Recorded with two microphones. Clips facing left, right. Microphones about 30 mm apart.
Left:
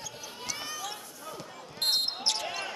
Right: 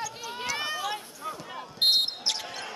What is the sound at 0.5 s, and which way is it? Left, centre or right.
Run, right.